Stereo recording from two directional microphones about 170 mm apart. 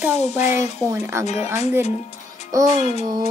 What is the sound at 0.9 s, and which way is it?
Music, 15° right (ahead or behind).